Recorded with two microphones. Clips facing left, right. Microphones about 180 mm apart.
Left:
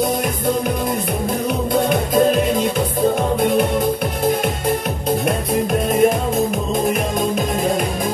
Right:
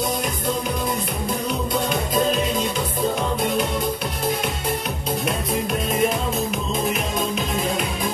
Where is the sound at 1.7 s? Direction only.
55° left (ahead or behind).